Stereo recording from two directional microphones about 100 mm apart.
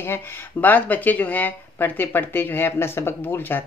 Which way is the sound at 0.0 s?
20° left (ahead or behind).